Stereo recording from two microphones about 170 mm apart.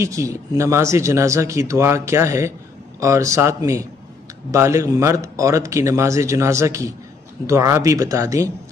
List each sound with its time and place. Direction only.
0.0 s speech: 20° right (ahead or behind)